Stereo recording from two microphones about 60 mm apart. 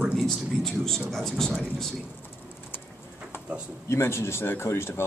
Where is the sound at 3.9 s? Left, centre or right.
Left.